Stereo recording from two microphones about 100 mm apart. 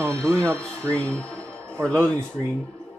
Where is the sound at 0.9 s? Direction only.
15° left (ahead or behind).